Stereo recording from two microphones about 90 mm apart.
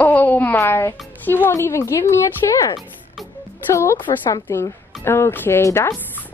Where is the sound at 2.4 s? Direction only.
45° left (ahead or behind).